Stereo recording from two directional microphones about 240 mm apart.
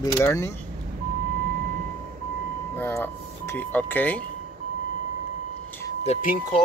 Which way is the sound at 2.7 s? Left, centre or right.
Centre.